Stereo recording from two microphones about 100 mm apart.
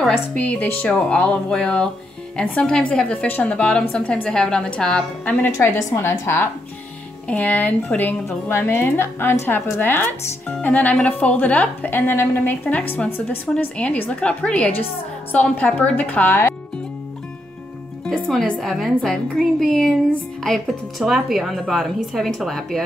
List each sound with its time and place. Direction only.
0.4 s a woman's voice: 15° left (ahead or behind)
5.3 s a woman's voice: 25° left (ahead or behind)
7.2 s a woman's voice: 15° left (ahead or behind)
18.0 s speech: 5° left (ahead or behind)